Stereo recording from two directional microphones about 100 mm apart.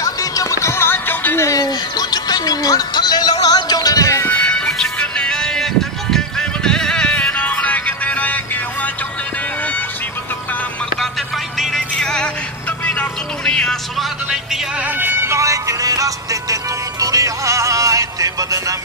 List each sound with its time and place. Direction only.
0.0 s music: 35° left (ahead or behind)
4.3 s music: 15° left (ahead or behind)
11.5 s music: centre (ahead or behind)
13.5 s music: 5° left (ahead or behind)
15.0 s music: 20° right (ahead or behind)